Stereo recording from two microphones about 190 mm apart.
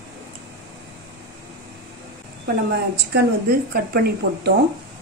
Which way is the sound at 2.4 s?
60° right (ahead or behind).